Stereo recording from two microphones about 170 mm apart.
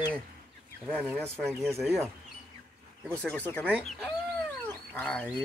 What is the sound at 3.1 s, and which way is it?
Speech, 5° left (ahead or behind).